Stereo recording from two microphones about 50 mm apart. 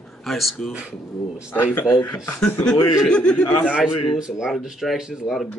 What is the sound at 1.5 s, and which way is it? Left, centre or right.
Speech, left.